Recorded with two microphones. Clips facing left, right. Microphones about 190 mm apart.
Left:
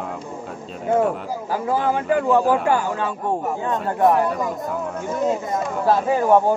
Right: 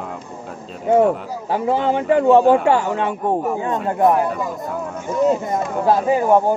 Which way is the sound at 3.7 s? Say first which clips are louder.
Right 1 dB; centre (ahead or behind).